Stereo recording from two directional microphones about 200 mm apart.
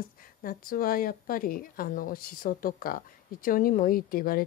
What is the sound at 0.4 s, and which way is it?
Speech, 45° left (ahead or behind).